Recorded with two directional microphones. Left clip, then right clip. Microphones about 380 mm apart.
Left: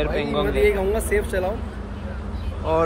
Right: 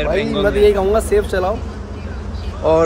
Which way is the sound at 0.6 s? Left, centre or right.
Centre.